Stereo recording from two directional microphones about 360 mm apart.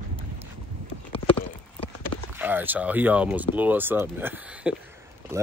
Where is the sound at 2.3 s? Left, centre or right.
Centre.